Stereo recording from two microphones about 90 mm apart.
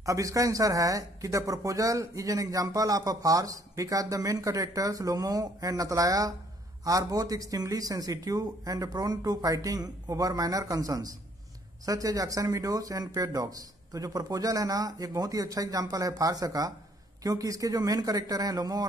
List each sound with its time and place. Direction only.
0.0 s a man's voice: 40° right (ahead or behind)